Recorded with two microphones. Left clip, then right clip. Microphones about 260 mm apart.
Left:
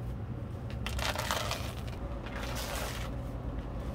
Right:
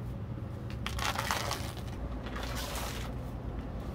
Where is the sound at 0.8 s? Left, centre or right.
Centre.